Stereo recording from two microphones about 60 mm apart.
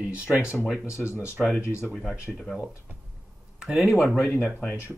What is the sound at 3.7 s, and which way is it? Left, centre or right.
Speech, centre.